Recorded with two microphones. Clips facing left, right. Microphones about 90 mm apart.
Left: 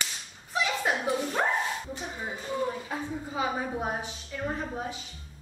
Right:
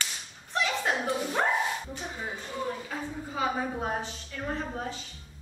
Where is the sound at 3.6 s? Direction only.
15° left (ahead or behind).